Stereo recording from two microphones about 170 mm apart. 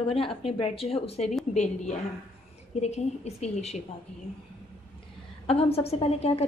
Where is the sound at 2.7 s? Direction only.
40° left (ahead or behind).